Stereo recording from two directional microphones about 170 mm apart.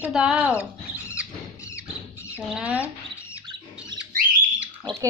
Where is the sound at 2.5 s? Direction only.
5° right (ahead or behind).